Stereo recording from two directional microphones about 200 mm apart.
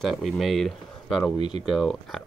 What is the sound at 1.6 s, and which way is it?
Speech, centre (ahead or behind).